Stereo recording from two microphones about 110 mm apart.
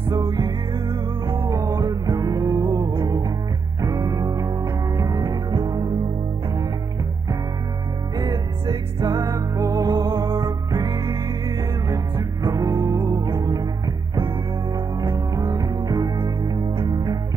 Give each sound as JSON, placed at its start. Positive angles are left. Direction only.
{"t": 0.1, "sound": "music", "side_deg": -40}
{"t": 1.7, "sound": "music", "side_deg": -35}
{"t": 8.2, "sound": "music", "side_deg": -35}
{"t": 12.2, "sound": "music", "side_deg": -30}
{"t": 15.3, "sound": "music", "side_deg": -35}